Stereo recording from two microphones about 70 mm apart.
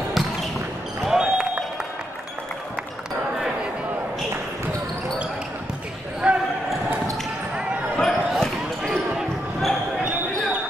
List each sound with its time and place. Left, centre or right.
1.0 s basketball bounce: centre
6.2 s basketball bounce: centre
8.0 s basketball bounce: centre